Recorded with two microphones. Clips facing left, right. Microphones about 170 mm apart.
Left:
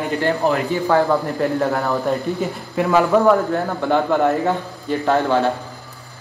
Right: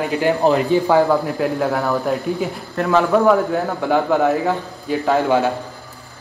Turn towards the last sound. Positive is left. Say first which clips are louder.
# even
turn(degrees=0)  # may be behind; listen again after turning